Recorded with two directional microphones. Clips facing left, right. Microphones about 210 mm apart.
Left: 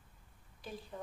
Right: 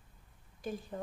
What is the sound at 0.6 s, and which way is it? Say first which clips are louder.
Speech: right 7 dB; 45° right (ahead or behind).